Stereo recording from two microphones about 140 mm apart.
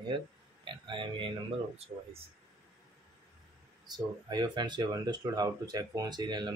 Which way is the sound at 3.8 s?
30° right (ahead or behind).